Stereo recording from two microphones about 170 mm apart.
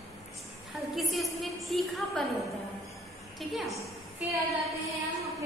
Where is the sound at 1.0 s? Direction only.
Centre (ahead or behind).